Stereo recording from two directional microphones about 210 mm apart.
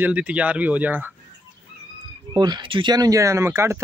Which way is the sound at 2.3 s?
20° right (ahead or behind).